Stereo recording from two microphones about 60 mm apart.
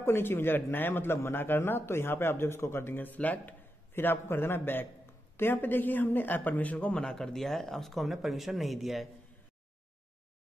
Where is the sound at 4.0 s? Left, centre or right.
Left; by 9.1 s centre.